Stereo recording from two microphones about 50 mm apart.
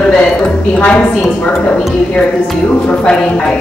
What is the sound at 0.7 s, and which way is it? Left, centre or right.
Speech, left.